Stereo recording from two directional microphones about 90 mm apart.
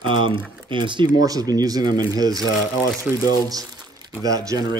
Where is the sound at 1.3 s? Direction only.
45° right (ahead or behind).